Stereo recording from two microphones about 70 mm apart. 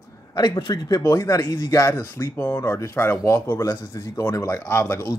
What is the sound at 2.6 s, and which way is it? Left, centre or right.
Speech, left.